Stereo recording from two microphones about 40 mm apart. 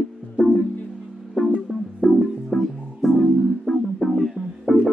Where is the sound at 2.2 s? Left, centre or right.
Centre.